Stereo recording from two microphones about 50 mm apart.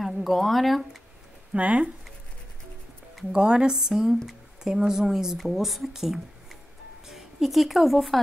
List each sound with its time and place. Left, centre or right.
0.0 s speech: centre
1.5 s speech: right
3.2 s a woman's voice: centre